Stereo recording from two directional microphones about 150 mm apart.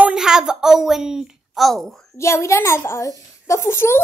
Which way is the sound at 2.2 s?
20° left (ahead or behind).